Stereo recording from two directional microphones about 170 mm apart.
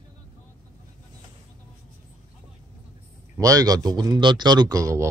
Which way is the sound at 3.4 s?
20° right (ahead or behind).